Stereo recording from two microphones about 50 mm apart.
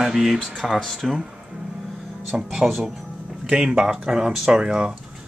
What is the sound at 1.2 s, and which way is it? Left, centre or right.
Music, centre.